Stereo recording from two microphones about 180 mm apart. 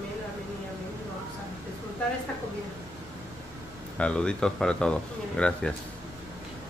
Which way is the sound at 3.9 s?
5° left (ahead or behind).